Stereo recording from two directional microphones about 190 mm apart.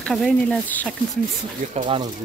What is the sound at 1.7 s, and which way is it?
Speech, 25° right (ahead or behind).